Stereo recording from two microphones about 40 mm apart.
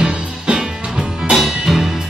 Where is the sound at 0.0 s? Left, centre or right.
Right.